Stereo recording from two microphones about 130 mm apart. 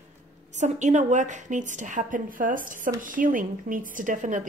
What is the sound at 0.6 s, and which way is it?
A woman's voice, 65° right (ahead or behind).